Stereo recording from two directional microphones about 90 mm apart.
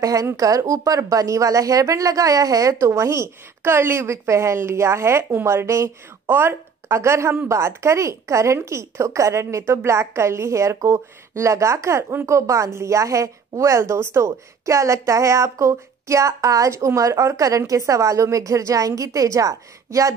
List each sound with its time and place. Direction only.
0.0 s a woman's voice: 35° right (ahead or behind)